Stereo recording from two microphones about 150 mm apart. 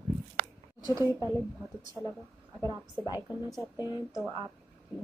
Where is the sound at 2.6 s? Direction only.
25° right (ahead or behind).